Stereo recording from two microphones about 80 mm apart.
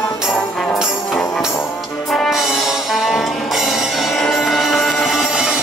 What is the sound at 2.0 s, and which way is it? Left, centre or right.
Music, centre.